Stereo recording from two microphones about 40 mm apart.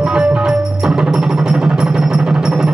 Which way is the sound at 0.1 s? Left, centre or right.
Centre.